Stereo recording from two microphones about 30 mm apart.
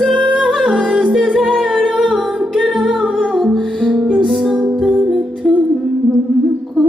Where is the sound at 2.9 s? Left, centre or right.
Right.